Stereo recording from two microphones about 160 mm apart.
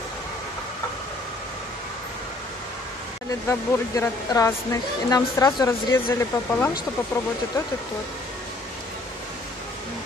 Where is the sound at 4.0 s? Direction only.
20° left (ahead or behind).